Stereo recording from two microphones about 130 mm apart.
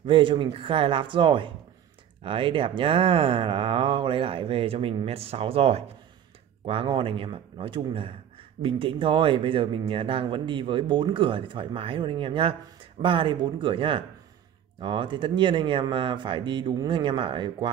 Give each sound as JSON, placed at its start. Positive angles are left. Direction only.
{"t": 0.0, "sound": "speech", "side_deg": -40}